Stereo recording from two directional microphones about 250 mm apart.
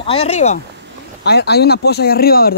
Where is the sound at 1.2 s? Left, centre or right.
Left.